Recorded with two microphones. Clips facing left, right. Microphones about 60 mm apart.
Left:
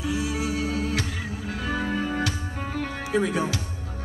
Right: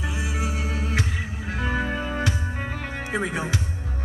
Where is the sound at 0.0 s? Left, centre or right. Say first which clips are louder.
Left 3 dB; right.